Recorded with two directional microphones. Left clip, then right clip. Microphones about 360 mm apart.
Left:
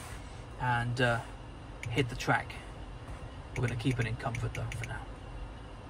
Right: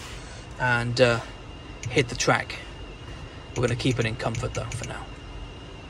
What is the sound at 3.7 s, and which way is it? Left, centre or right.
Speech, centre.